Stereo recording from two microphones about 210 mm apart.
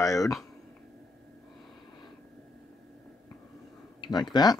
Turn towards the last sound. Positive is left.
turn(degrees=20)  # may be behind; listen again after turning